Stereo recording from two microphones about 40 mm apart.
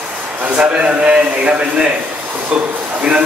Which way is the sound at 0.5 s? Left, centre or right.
Right.